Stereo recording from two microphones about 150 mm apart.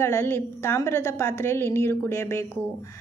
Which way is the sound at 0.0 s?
15° left (ahead or behind).